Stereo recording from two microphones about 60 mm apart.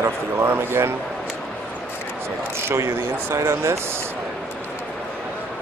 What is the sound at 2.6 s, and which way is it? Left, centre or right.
Speech, right.